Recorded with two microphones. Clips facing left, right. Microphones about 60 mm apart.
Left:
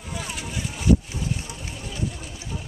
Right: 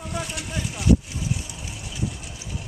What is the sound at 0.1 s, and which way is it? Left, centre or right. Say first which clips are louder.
Vehicle: right 1 dB; centre.